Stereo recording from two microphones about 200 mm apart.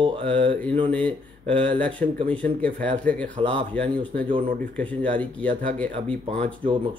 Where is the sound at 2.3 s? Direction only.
5° left (ahead or behind).